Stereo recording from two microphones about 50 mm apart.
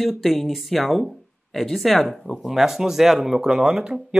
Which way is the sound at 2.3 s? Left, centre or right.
Centre.